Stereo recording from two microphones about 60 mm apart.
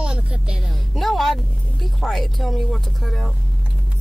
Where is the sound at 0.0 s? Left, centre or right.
Centre.